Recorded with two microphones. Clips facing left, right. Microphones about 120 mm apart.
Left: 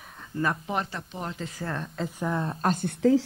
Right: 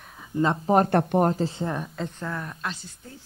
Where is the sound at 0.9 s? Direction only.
60° right (ahead or behind).